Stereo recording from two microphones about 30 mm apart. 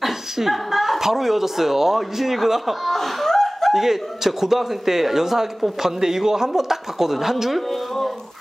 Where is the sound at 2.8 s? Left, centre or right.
Centre.